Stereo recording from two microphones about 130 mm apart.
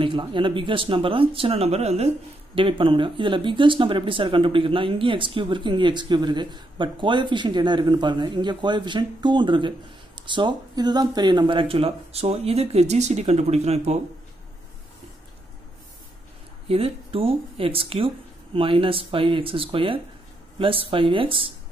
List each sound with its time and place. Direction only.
0.0 s speech: 40° right (ahead or behind)
2.5 s speech: 40° right (ahead or behind)
16.6 s speech: 50° right (ahead or behind)